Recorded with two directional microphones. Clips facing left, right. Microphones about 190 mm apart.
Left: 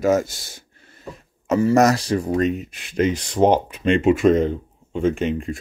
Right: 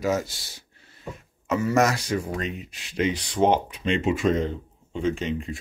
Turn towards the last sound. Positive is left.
turn(degrees=55)  # may be behind; listen again after turning